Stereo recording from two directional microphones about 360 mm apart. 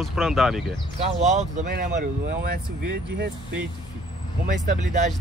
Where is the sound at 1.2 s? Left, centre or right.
Centre.